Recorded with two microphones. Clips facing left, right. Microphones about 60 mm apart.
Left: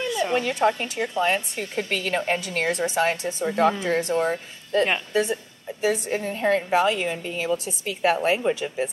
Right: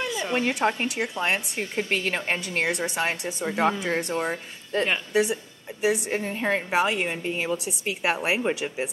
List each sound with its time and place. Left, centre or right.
0.1 s a sound: centre
0.6 s speech: centre
1.6 s a woman's voice: right
2.1 s a woman's voice: centre
8.0 s speech: centre